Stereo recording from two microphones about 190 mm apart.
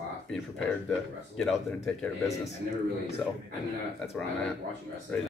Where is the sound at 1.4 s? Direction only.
5° left (ahead or behind).